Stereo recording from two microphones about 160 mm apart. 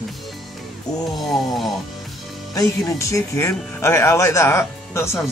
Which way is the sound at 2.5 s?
20° left (ahead or behind).